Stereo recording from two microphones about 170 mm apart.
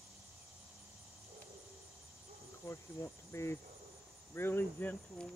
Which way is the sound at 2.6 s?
15° left (ahead or behind).